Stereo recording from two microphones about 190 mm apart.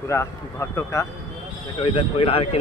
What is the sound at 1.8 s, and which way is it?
Speech, 30° left (ahead or behind).